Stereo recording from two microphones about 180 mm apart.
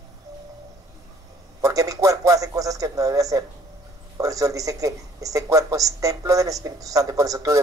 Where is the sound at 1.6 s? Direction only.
20° right (ahead or behind).